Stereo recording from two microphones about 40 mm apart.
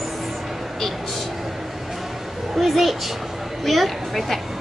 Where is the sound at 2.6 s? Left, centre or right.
Centre.